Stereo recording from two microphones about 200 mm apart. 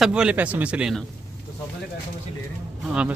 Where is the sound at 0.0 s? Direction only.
5° right (ahead or behind).